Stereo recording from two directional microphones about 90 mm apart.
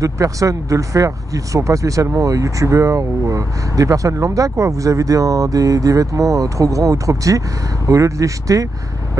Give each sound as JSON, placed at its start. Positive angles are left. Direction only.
{"t": 0.0, "sound": "speech", "side_deg": -40}